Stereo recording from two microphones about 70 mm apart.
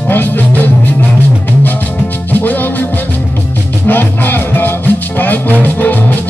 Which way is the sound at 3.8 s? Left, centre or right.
Left.